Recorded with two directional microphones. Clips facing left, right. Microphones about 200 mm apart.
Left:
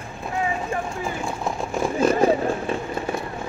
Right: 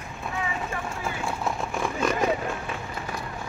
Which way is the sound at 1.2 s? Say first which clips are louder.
Left 2 dB; 25° left (ahead or behind).